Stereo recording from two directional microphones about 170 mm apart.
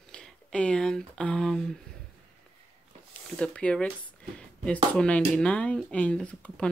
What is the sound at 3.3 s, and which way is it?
Speech, 5° left (ahead or behind).